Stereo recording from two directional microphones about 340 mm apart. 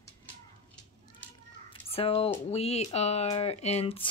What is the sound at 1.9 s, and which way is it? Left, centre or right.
Speech, centre.